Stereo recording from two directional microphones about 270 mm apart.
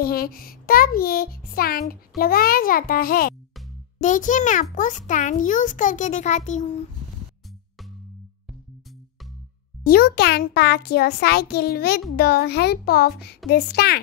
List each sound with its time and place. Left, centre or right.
0.0 s a child's voice: left
9.8 s a child's voice: left